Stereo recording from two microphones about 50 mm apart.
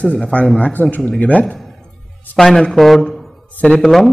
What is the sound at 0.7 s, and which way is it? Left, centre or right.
Speech, left.